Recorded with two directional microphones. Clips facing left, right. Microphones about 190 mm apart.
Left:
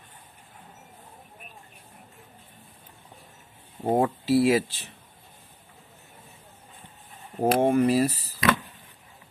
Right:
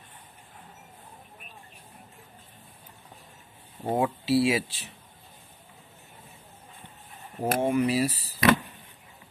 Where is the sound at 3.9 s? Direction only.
55° left (ahead or behind).